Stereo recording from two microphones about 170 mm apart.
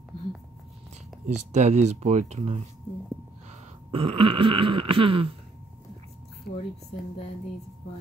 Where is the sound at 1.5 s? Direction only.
40° right (ahead or behind).